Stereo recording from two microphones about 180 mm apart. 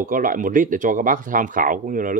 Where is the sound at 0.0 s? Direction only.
50° right (ahead or behind).